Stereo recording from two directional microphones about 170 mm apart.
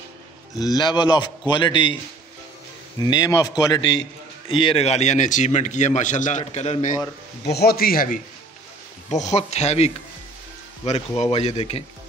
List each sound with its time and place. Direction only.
0.6 s a man's voice: 25° left (ahead or behind)
3.0 s a man's voice: 25° left (ahead or behind)
4.6 s a man's voice: 35° left (ahead or behind)
7.5 s a man's voice: 65° left (ahead or behind)
9.1 s speech: 40° left (ahead or behind)